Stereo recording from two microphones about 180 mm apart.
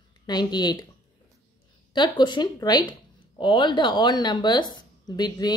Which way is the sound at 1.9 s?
25° left (ahead or behind).